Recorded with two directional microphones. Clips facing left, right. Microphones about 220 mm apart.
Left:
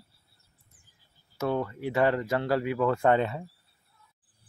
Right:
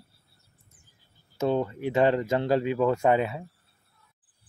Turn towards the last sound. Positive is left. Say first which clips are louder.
# right 1 dB
turn(degrees=-10)  # may be behind; listen again after turning